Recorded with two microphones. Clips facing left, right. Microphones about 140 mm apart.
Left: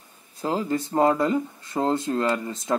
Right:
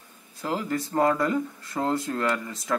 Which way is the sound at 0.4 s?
30° left (ahead or behind).